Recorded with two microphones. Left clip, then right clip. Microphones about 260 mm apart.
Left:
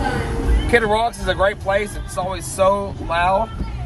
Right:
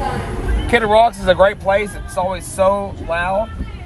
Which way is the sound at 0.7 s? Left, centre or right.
Right.